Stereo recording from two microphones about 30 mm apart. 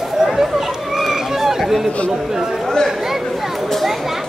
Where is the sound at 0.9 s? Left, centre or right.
Centre.